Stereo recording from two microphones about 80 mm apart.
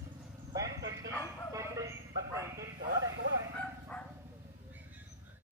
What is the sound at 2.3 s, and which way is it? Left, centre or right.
Sheep, right.